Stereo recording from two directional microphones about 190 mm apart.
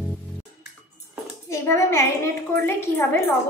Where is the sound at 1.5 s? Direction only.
15° left (ahead or behind).